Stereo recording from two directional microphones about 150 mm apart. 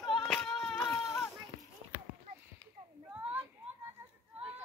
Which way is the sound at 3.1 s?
15° right (ahead or behind).